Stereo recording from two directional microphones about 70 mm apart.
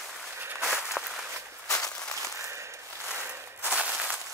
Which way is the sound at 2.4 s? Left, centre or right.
Right.